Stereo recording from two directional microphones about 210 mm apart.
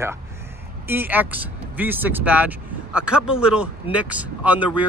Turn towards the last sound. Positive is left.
turn(degrees=-5)  # may be behind; listen again after turning